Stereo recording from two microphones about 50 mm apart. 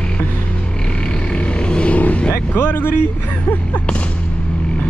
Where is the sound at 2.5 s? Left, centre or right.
Left.